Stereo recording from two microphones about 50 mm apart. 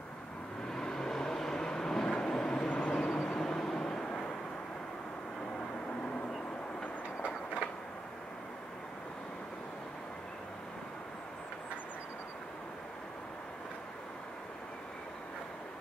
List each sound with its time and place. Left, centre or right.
0.7 s vehicle: centre